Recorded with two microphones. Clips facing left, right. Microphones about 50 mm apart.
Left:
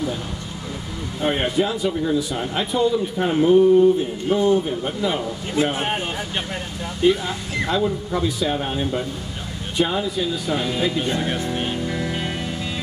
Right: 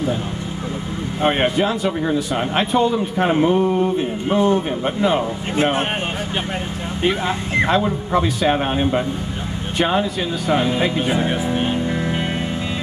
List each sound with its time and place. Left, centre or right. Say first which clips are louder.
1.2 s speech: right 3 dB; right
3.4 s speech: left 4 dB; right
7.0 s speech: left 1 dB; right
10.5 s speech: right 8 dB; right
11.1 s speech: right 4 dB; centre
11.8 s music: right 3 dB; right